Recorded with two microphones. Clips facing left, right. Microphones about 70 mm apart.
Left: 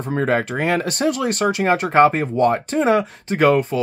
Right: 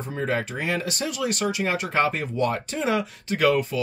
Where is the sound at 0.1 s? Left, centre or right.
Left.